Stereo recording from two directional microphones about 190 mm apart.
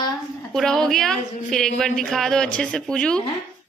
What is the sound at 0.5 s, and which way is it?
A woman's voice, 5° left (ahead or behind).